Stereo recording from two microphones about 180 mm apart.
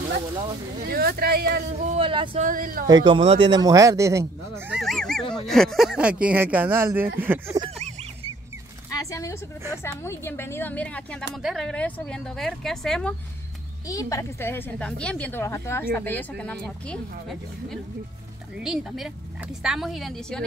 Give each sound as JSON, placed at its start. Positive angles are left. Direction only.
{"t": 0.8, "sound": "speech", "side_deg": -60}
{"t": 2.0, "sound": "speech", "side_deg": -30}
{"t": 2.4, "sound": "speech", "side_deg": -50}
{"t": 2.9, "sound": "speech", "side_deg": -25}
{"t": 9.1, "sound": "a woman's voice", "side_deg": 15}
{"t": 13.8, "sound": "a woman's voice", "side_deg": 20}